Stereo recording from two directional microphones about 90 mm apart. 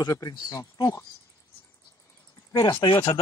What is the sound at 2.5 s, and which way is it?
Speech, 40° left (ahead or behind).